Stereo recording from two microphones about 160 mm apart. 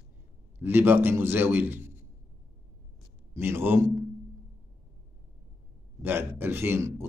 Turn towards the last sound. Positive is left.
turn(degrees=-15)  # may be behind; listen again after turning